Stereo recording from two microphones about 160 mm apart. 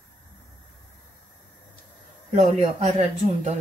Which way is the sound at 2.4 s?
45° right (ahead or behind).